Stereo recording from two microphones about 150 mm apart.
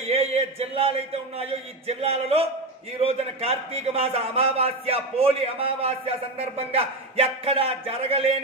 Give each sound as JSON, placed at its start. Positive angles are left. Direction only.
{"t": 0.0, "sound": "a man's voice", "side_deg": -45}